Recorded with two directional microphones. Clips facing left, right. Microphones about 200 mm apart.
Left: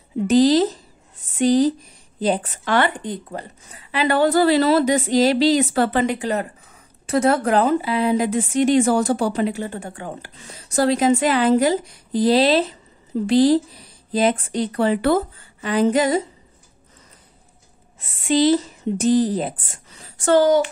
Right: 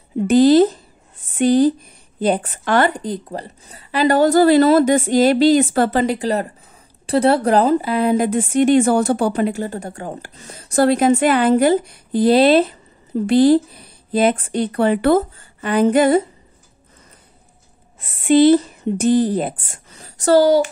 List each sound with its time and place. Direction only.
0.3 s a woman's voice: 55° right (ahead or behind)
18.1 s a woman's voice: 60° right (ahead or behind)
20.0 s speech: 40° right (ahead or behind)